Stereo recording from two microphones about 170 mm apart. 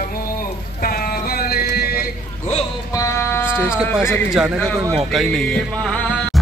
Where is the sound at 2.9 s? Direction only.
20° left (ahead or behind).